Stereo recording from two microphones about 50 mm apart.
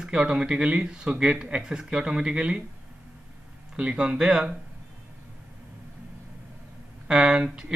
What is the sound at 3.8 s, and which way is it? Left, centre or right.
Speech, centre.